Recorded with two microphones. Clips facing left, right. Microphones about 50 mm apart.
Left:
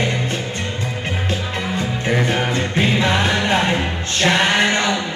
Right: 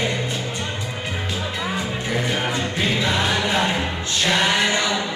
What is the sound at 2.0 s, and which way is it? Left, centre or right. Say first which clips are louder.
Music: left 5 dB; left.